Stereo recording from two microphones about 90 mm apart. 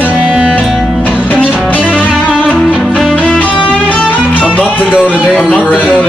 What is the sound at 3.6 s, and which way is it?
Music, 15° left (ahead or behind).